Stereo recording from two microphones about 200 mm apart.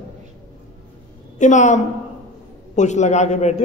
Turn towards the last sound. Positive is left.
turn(degrees=35)  # may be behind; listen again after turning